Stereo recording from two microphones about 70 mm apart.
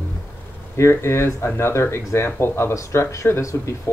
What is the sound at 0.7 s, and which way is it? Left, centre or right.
Speech, left.